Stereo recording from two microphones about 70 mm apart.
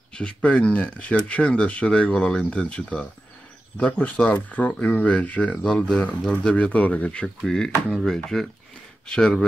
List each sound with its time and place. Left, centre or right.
0.1 s speech: centre
6.5 s speech: centre